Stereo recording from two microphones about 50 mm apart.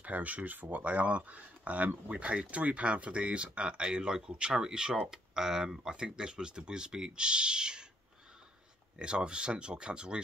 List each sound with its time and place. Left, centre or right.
0.0 s speech: right
0.8 s speech: right
8.9 s speech: centre